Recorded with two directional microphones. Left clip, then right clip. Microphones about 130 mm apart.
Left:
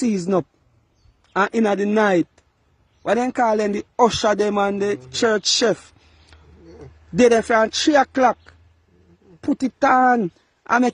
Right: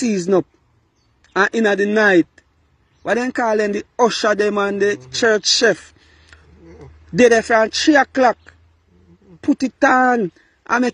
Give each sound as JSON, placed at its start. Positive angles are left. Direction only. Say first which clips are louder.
{"t": 0.0, "sound": "a man's voice", "louder": "right 4 dB", "side_deg": 15}